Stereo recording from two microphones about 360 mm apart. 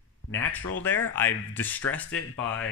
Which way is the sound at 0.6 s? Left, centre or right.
Left.